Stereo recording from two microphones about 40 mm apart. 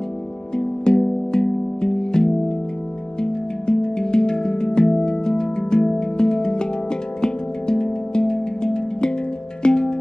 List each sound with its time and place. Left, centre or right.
0.6 s music: centre